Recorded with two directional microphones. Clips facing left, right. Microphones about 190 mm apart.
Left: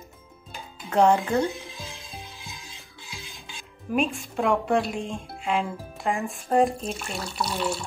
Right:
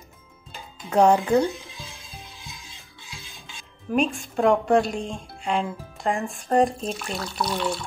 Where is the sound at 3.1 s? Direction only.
15° left (ahead or behind).